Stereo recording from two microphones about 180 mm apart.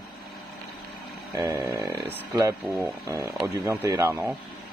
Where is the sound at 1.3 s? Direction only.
15° right (ahead or behind).